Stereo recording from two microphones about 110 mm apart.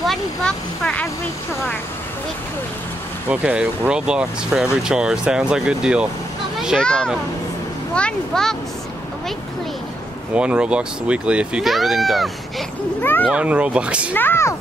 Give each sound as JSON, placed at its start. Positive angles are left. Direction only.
{"t": 0.0, "sound": "speech", "side_deg": 5}
{"t": 3.3, "sound": "speech", "side_deg": -10}
{"t": 6.8, "sound": "speech", "side_deg": 10}
{"t": 10.3, "sound": "speech", "side_deg": -10}
{"t": 13.0, "sound": "speech", "side_deg": 20}
{"t": 13.3, "sound": "speech", "side_deg": -10}
{"t": 14.1, "sound": "speech", "side_deg": 20}